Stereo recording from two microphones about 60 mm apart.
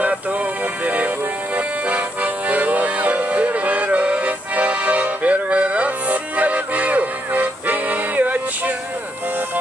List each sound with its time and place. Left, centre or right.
0.8 s music: right